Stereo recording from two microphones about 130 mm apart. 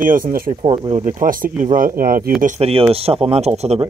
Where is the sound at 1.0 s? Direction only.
90° right.